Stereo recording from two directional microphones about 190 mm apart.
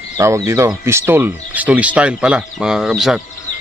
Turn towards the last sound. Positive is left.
turn(degrees=0)  # may be behind; listen again after turning